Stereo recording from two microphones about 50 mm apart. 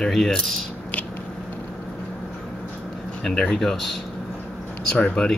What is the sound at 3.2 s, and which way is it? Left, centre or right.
Speech, centre.